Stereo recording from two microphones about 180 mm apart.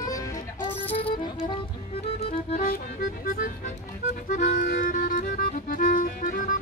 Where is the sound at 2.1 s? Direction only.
50° left (ahead or behind).